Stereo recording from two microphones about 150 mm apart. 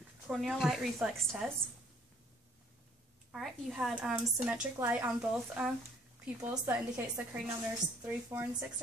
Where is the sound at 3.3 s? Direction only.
5° right (ahead or behind).